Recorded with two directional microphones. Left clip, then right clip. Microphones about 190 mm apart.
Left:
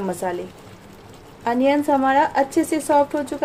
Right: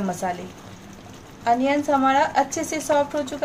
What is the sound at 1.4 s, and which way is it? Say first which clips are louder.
Speech: left 1 dB; 40° left (ahead or behind).